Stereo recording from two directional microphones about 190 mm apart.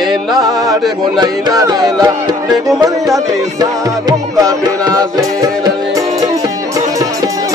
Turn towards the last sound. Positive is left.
turn(degrees=-20)  # may be behind; listen again after turning